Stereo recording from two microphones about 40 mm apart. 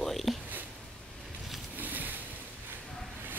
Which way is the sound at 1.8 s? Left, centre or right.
Right.